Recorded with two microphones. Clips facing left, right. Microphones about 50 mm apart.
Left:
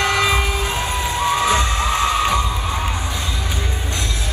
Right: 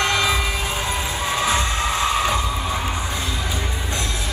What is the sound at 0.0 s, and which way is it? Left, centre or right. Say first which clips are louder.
Cheering: left 2 dB; left.